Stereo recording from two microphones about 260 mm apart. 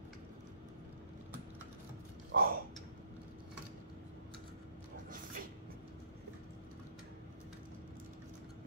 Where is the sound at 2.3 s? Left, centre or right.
Right.